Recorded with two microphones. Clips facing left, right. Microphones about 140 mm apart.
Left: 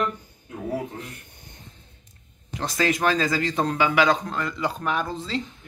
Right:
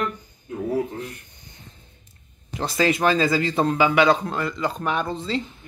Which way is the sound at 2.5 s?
5° right (ahead or behind).